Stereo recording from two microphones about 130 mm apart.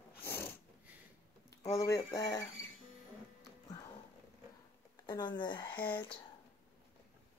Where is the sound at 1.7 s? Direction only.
25° left (ahead or behind).